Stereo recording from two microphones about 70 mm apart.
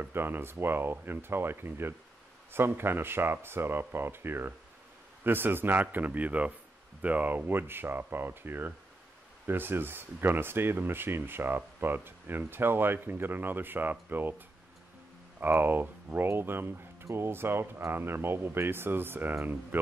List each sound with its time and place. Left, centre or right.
0.0 s a man's voice: right
15.4 s speech: right